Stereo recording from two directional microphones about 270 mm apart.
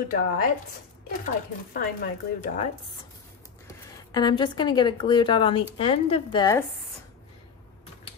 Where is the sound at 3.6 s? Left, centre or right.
Centre.